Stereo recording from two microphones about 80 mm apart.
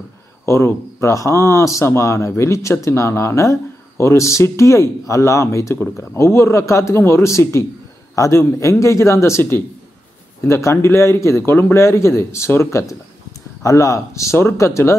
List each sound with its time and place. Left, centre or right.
0.5 s a man's voice: left